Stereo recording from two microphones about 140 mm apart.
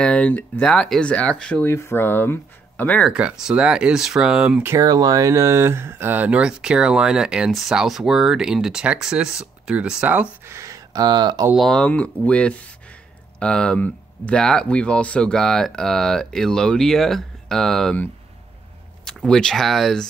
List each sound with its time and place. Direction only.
0.0 s speech: 10° left (ahead or behind)
1.6 s speech: 20° left (ahead or behind)
3.1 s speech: 5° right (ahead or behind)
4.7 s speech: 25° right (ahead or behind); by 10.2 s 10° right (ahead or behind)
10.4 s speech: 20° right (ahead or behind)
11.5 s speech: 5° left (ahead or behind)